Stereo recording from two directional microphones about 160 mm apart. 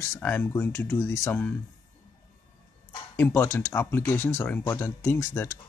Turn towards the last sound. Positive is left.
turn(degrees=15)  # may be behind; listen again after turning